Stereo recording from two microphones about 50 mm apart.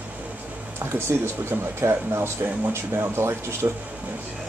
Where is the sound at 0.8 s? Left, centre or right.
Right.